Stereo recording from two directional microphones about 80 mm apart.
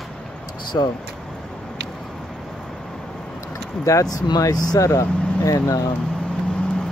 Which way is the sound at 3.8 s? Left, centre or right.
Left.